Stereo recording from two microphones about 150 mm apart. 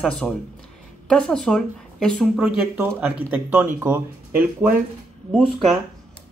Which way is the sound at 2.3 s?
10° right (ahead or behind).